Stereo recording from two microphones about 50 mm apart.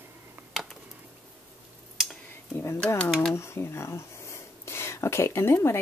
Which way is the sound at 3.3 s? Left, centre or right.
Left.